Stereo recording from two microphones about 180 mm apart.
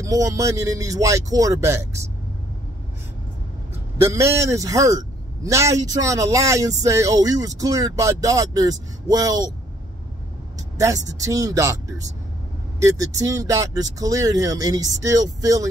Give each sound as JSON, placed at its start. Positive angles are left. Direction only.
{"t": 0.0, "sound": "speech", "side_deg": -20}
{"t": 4.0, "sound": "a man's voice", "side_deg": -15}
{"t": 10.8, "sound": "a man's voice", "side_deg": -20}
{"t": 12.8, "sound": "a man's voice", "side_deg": -20}